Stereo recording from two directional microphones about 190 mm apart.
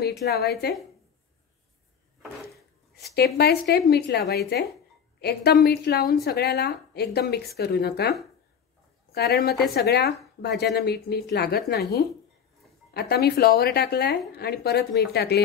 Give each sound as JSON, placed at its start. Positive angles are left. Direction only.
{"t": 0.4, "sound": "a woman's voice", "side_deg": 55}
{"t": 3.3, "sound": "a woman's voice", "side_deg": 60}
{"t": 12.9, "sound": "a woman's voice", "side_deg": 55}